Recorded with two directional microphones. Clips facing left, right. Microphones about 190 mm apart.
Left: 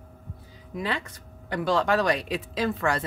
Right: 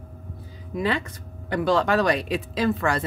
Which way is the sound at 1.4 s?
75° right (ahead or behind).